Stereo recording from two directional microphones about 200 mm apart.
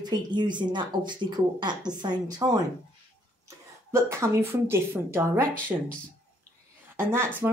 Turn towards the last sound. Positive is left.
turn(degrees=-10)  # may be behind; listen again after turning